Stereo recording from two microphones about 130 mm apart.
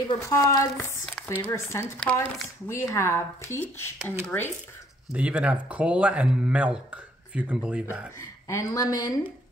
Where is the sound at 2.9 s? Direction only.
20° left (ahead or behind).